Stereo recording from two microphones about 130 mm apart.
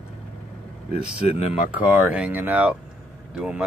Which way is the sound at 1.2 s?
50° left (ahead or behind).